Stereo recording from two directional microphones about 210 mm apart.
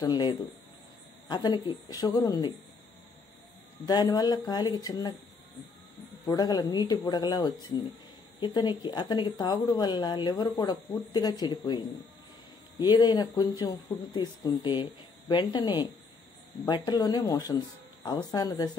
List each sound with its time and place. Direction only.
0.0 s speech: 20° left (ahead or behind)
3.8 s speech: 20° left (ahead or behind)
6.2 s speech: 20° left (ahead or behind)